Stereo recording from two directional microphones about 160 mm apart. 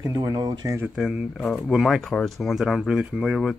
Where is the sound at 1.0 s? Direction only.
Centre (ahead or behind).